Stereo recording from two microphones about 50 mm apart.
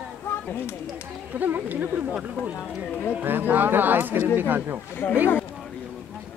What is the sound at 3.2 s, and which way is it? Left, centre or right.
Speech, right.